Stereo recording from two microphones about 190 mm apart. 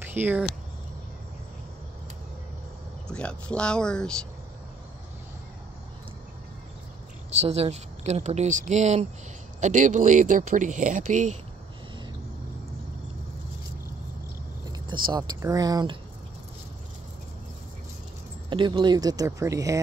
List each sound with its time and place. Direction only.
0.0 s speech: 10° right (ahead or behind)
3.1 s speech: 5° left (ahead or behind)
7.3 s speech: 35° right (ahead or behind)
15.0 s speech: 20° right (ahead or behind)
18.5 s speech: 25° right (ahead or behind)